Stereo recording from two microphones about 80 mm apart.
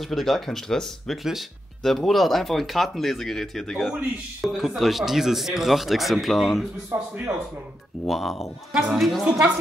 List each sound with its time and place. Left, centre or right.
0.1 s speech: centre
6.9 s a man's voice: right
8.1 s speech: centre